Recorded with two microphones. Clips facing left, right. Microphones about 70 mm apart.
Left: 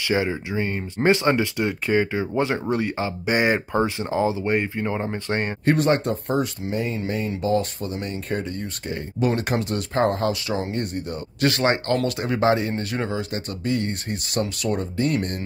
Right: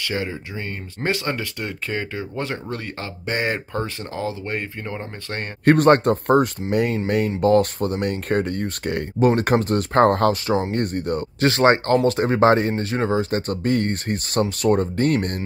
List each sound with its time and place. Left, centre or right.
0.0 s speech: centre
5.7 s speech: right
6.7 s speech: right
9.3 s speech: right
11.4 s speech: right